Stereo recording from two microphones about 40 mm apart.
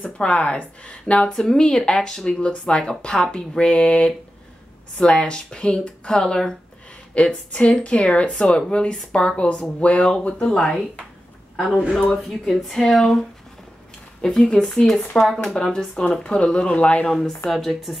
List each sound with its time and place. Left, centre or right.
0.2 s speech: left
1.2 s speech: centre
7.2 s speech: left
10.5 s speech: centre
12.0 s speech: centre
14.2 s speech: centre
16.1 s speech: left
17.1 s speech: centre